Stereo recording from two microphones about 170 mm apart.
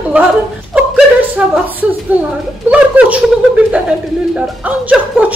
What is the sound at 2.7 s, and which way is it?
Speech, 5° right (ahead or behind).